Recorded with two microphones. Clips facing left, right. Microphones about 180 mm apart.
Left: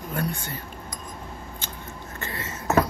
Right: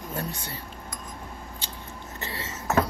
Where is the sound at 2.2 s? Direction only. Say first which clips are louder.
Left 2 dB; 20° right (ahead or behind).